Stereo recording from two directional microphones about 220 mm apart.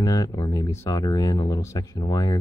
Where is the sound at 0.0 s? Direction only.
15° left (ahead or behind).